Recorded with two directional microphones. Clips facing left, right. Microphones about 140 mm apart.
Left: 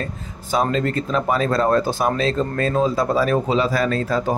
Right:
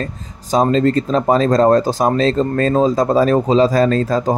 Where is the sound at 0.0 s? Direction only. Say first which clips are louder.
Right 3 dB; 35° right (ahead or behind).